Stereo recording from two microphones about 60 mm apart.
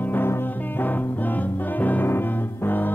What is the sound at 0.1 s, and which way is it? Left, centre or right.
Music, left.